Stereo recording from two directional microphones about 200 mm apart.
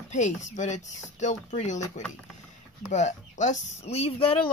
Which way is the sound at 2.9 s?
35° left (ahead or behind).